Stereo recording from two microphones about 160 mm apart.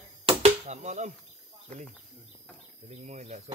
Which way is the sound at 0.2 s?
40° right (ahead or behind).